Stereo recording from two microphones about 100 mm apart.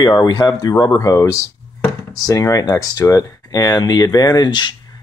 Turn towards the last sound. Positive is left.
turn(degrees=45)  # may be behind; listen again after turning